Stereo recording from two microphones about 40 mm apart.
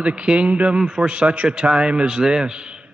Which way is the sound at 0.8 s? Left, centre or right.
Centre.